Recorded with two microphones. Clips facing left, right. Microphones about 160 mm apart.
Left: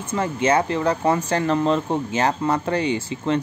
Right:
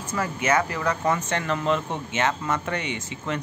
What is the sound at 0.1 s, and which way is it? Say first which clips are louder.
Speech: left 4 dB; 30° left (ahead or behind).